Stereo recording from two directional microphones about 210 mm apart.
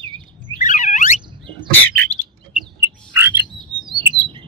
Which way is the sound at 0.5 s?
35° left (ahead or behind).